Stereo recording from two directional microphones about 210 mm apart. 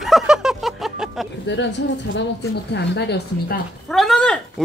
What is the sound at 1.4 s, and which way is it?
A woman's voice, 60° left (ahead or behind).